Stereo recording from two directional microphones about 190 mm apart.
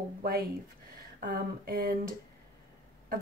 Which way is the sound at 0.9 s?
50° right (ahead or behind).